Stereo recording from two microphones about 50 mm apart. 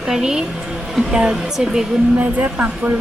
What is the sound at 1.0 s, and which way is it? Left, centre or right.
A woman's voice, centre.